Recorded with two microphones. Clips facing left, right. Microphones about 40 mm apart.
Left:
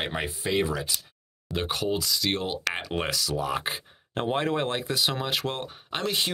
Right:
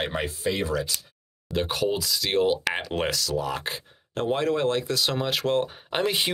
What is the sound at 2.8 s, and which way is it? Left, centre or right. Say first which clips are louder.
Speech: right 2 dB; centre.